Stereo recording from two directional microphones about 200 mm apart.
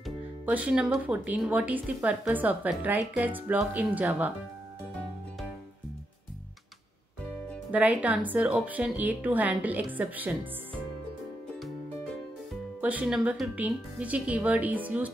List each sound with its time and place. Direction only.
0.0 s speech: 5° right (ahead or behind)
7.7 s speech: 5° right (ahead or behind)
12.8 s speech: 5° right (ahead or behind)